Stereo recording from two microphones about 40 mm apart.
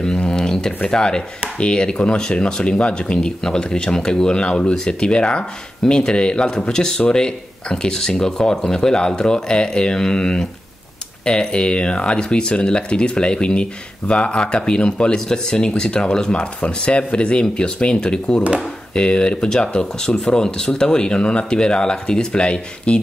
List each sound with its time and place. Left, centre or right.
0.0 s a sound: left
0.8 s speech: centre
16.6 s speech: left